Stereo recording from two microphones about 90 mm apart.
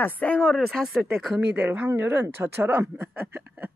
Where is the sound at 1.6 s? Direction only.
20° right (ahead or behind).